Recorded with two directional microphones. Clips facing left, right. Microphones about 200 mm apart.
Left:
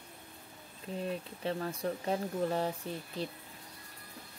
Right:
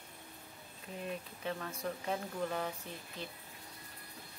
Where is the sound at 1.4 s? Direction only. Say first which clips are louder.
Left 5 dB; 30° left (ahead or behind).